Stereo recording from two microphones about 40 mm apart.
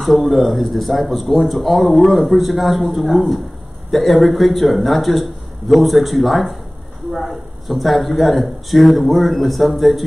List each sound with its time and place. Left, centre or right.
0.0 s speech: centre
7.6 s speech: centre